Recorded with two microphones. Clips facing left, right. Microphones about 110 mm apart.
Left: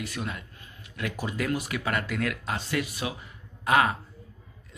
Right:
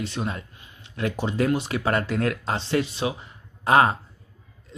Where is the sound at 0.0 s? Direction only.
30° right (ahead or behind).